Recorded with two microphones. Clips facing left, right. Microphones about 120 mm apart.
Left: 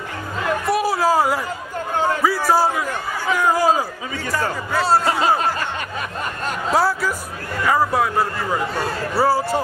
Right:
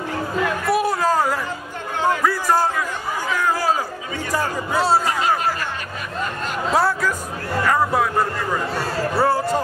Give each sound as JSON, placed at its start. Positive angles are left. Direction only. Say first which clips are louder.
{"t": 0.7, "sound": "chatter", "louder": "left 1 dB", "side_deg": 0}
{"t": 2.2, "sound": "music", "louder": "left 2 dB", "side_deg": 5}
{"t": 3.3, "sound": "crowd", "louder": "left 4 dB", "side_deg": 15}
{"t": 4.7, "sound": "a man's voice", "louder": "even", "side_deg": 0}
{"t": 5.2, "sound": "music", "louder": "left 2 dB", "side_deg": 30}
{"t": 6.7, "sound": "a man's voice", "louder": "even", "side_deg": 0}